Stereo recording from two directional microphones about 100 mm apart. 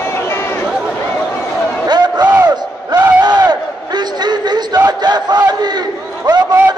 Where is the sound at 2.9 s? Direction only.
45° right (ahead or behind).